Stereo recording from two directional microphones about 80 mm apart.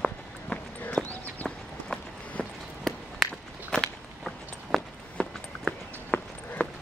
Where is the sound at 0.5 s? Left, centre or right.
Centre.